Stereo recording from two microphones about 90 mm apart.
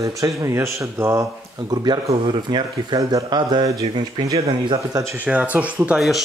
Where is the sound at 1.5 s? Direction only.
50° right (ahead or behind).